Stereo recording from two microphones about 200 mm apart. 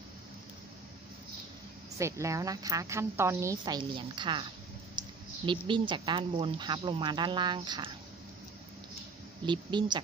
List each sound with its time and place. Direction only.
2.0 s a woman's voice: 15° right (ahead or behind)
9.5 s speech: 20° right (ahead or behind)